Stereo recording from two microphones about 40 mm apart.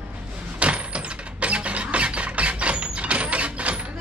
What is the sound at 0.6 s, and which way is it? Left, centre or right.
Mechanisms, right.